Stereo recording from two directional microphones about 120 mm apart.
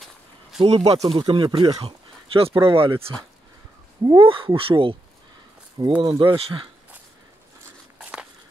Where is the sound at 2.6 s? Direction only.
45° right (ahead or behind).